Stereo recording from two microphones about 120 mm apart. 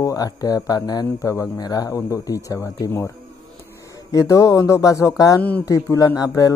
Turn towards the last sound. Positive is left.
turn(degrees=30)  # may be behind; listen again after turning